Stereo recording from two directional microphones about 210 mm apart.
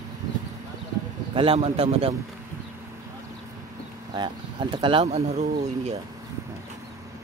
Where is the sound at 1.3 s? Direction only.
25° right (ahead or behind).